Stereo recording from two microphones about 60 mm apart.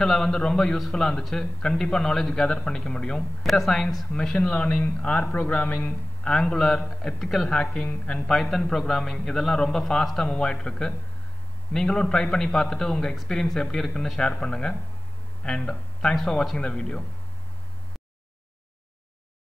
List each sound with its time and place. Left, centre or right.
0.0 s a man's voice: centre
4.5 s speech: left
5.9 s a man's voice: centre